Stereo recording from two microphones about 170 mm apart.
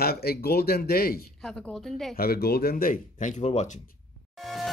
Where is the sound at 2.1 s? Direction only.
65° left (ahead or behind); by 3.8 s 45° left (ahead or behind).